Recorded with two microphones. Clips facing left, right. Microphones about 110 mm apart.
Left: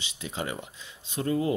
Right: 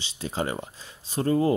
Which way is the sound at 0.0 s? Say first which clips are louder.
Right 5 dB; 35° right (ahead or behind).